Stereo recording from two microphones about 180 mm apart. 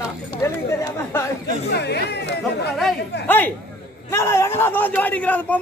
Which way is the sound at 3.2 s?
10° left (ahead or behind).